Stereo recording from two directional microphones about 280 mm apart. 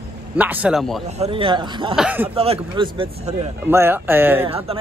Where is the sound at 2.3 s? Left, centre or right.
Right.